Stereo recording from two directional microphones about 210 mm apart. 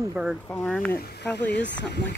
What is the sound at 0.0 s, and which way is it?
Speech, 10° right (ahead or behind).